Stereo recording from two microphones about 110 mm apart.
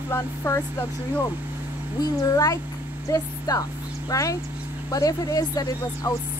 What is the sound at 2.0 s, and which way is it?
A woman's voice, 35° left (ahead or behind).